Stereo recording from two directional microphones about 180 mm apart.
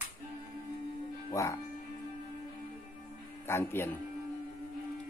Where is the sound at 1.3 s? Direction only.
15° left (ahead or behind).